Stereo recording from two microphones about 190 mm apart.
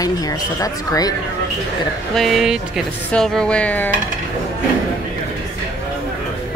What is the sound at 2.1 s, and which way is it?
Speech, centre (ahead or behind).